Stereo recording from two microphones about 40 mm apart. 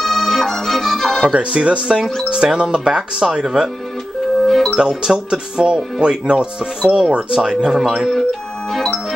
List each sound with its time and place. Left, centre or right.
0.0 s music: centre
1.3 s speech: right
4.5 s music: centre
4.7 s speech: centre